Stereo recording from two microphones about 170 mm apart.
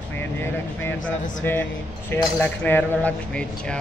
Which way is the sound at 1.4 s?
10° left (ahead or behind).